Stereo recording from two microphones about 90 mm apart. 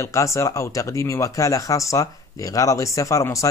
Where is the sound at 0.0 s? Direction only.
35° left (ahead or behind).